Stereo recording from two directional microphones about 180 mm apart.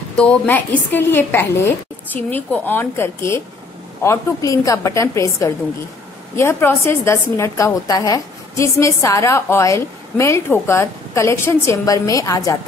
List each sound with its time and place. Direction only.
0.2 s a woman's voice: 10° left (ahead or behind)